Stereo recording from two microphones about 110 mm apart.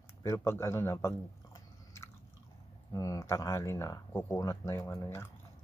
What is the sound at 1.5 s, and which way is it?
Biting, 25° left (ahead or behind).